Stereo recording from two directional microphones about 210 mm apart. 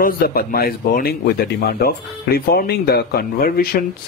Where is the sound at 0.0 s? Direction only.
45° left (ahead or behind).